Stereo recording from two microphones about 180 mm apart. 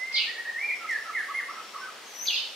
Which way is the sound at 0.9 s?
Centre (ahead or behind).